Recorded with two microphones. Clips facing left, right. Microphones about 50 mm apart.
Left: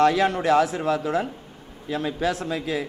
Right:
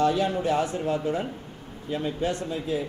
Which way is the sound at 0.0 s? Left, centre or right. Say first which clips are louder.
Left 4 dB; left.